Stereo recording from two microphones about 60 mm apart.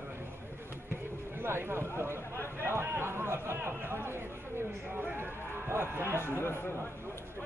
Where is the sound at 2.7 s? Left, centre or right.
Right.